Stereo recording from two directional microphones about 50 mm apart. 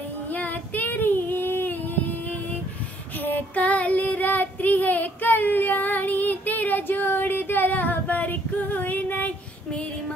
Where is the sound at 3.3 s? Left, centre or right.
Left.